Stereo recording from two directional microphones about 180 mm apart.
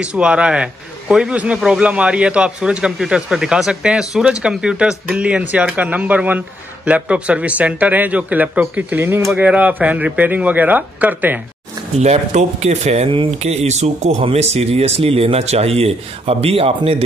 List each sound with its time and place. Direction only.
0.0 s a man's voice: 5° right (ahead or behind)
12.0 s speech: 40° right (ahead or behind)